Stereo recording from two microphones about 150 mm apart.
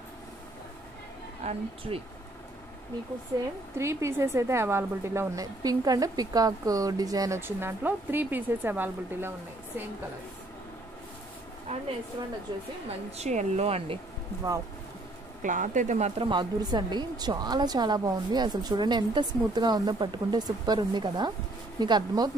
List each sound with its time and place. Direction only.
1.4 s speech: 45° right (ahead or behind)
3.7 s a woman's voice: 20° right (ahead or behind)
11.7 s speech: 45° right (ahead or behind)
15.4 s speech: 60° right (ahead or behind)
16.3 s a woman's voice: 30° right (ahead or behind)